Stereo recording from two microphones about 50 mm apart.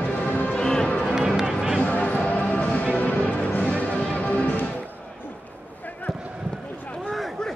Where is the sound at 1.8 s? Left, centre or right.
Left.